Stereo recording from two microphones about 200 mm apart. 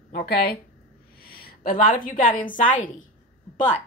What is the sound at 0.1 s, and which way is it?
A woman's voice, 50° left (ahead or behind).